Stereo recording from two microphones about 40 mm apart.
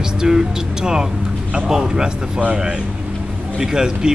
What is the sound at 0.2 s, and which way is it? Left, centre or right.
Speech, centre.